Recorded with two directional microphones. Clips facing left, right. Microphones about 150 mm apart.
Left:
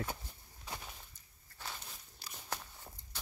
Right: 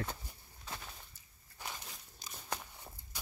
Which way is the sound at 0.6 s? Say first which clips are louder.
Left 1 dB; 15° left (ahead or behind).